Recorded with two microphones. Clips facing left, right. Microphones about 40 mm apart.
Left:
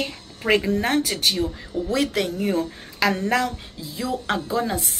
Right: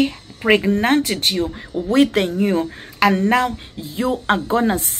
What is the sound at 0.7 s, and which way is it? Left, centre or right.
Speech, right.